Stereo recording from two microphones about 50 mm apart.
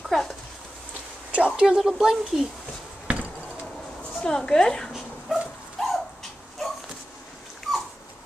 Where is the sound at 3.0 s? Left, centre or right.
Right.